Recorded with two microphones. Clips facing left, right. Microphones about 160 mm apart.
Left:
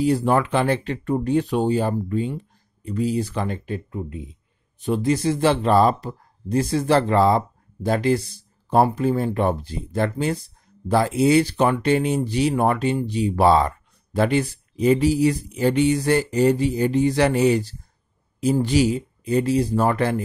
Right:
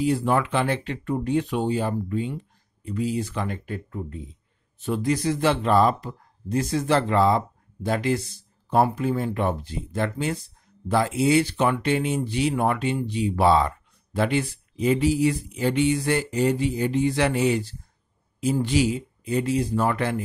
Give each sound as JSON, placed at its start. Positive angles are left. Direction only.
{"t": 0.0, "sound": "speech", "side_deg": 40}